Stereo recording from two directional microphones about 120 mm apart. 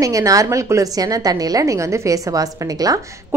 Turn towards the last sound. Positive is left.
turn(degrees=-25)  # may be behind; listen again after turning